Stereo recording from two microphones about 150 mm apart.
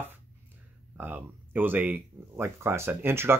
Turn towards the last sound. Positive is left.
turn(degrees=-15)  # may be behind; listen again after turning